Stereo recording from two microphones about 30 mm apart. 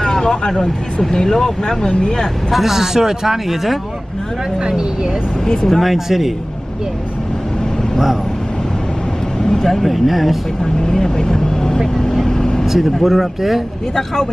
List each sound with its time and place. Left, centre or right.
0.0 s speech: left
1.9 s speech: left
2.5 s speech: centre
4.6 s speech: right
5.4 s speech: left
5.7 s speech: centre
5.9 s speech: centre
9.4 s vehicle: centre
9.8 s speech: centre
10.6 s speech: centre
12.0 s vehicle: centre
12.6 s speech: centre